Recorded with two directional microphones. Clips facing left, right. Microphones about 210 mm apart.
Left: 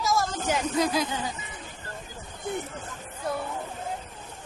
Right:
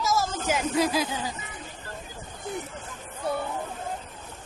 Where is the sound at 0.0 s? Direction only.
Centre (ahead or behind).